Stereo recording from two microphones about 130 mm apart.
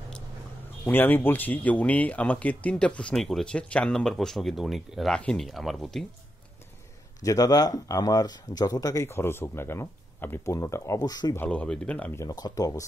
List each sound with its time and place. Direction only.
0.8 s speech: 15° left (ahead or behind)
7.2 s speech: 25° left (ahead or behind)
11.3 s speech: 10° left (ahead or behind); by 12.8 s 30° left (ahead or behind)